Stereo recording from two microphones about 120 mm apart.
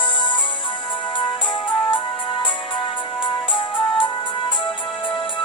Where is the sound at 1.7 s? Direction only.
45° left (ahead or behind).